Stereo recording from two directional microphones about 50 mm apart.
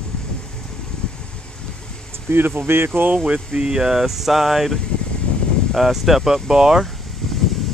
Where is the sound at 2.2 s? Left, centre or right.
Right.